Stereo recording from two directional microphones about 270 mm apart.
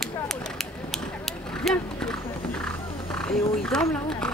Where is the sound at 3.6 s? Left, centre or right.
Centre.